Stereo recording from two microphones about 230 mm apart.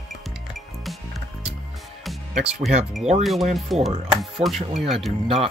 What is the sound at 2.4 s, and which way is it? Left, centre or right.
Speech, right.